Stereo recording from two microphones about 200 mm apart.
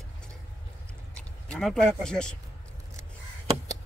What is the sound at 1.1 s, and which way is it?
Speech, 5° left (ahead or behind).